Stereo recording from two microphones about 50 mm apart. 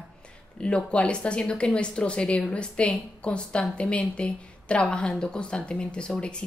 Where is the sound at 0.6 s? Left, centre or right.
Centre.